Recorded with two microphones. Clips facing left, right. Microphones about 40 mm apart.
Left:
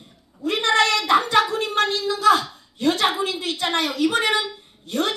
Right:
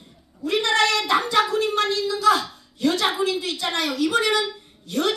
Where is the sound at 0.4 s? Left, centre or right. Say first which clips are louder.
Left 1 dB; left.